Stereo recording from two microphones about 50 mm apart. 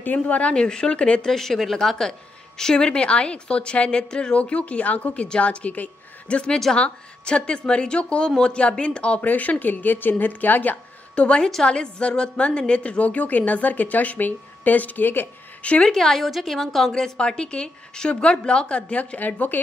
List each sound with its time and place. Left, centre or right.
0.0 s a woman's voice: left
1.3 s a woman's voice: centre
4.4 s a woman's voice: left
11.1 s a woman's voice: left
15.6 s a woman's voice: left
15.9 s a woman's voice: centre; by 19.6 s left